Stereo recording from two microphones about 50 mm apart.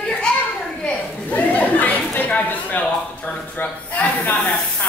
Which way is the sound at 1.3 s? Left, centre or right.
Left.